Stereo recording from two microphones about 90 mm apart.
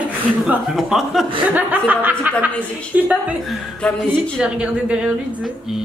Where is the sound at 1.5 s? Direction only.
15° right (ahead or behind).